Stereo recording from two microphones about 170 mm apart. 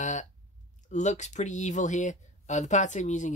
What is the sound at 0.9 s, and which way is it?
Speech, 45° left (ahead or behind).